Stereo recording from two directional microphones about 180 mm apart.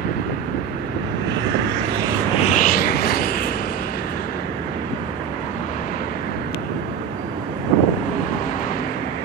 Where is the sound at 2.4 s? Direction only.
45° left (ahead or behind).